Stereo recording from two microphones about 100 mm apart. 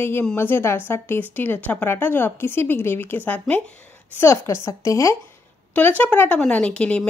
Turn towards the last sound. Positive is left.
turn(degrees=10)  # may be behind; listen again after turning